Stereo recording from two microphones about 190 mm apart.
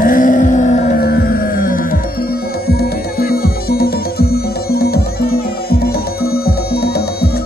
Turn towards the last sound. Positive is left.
turn(degrees=55)  # may be behind; listen again after turning